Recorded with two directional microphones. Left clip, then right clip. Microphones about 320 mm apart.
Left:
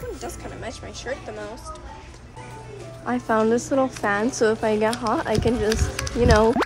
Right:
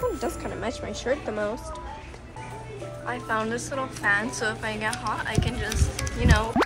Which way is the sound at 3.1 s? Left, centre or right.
Left.